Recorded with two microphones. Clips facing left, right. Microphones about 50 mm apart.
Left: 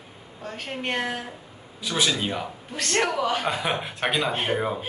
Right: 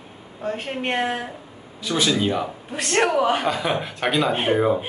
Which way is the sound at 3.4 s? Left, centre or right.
Centre.